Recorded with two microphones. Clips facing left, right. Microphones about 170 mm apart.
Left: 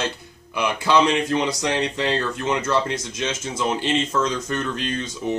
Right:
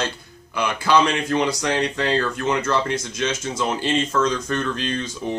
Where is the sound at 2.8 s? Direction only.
20° left (ahead or behind).